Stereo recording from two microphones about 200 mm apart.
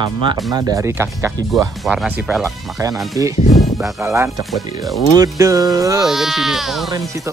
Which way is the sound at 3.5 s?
Centre (ahead or behind).